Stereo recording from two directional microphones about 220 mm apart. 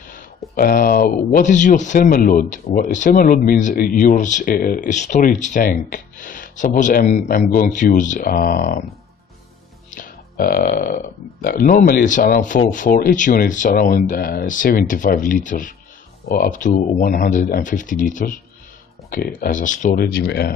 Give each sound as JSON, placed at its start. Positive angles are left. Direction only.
{"t": 0.6, "sound": "speech", "side_deg": 40}
{"t": 9.9, "sound": "burping", "side_deg": 40}
{"t": 11.4, "sound": "speech", "side_deg": 40}